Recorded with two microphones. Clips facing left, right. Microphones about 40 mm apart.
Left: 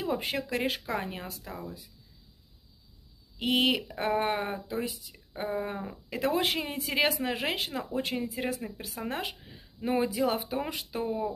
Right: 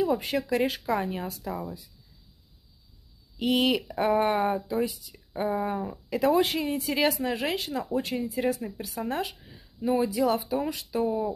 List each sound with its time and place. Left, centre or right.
0.0 s speech: centre
3.3 s speech: centre
9.8 s speech: left
10.4 s speech: left
10.7 s speech: centre